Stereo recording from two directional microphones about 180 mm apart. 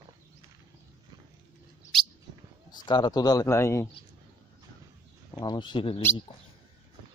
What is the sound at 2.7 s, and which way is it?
A man's voice, 25° left (ahead or behind).